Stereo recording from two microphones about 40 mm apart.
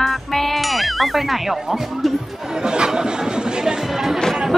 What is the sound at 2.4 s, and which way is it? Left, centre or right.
Music, centre.